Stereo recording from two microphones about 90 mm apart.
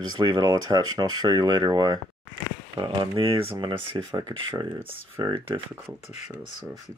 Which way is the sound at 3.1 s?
90° right.